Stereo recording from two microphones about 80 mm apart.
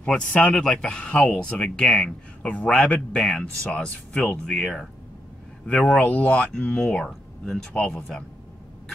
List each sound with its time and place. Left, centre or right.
0.0 s a man's voice: centre
5.9 s speech: centre